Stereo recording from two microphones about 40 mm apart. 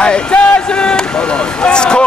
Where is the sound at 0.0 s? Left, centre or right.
Left.